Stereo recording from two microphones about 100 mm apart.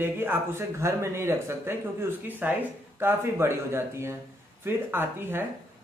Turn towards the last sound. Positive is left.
turn(degrees=-20)  # may be behind; listen again after turning